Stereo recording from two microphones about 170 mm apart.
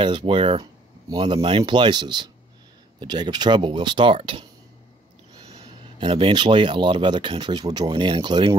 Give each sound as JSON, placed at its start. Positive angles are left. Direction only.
{"t": 0.0, "sound": "speech", "side_deg": -30}
{"t": 5.9, "sound": "speech", "side_deg": -30}